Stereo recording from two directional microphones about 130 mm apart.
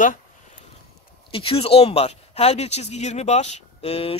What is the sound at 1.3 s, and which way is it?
Speech, 45° left (ahead or behind).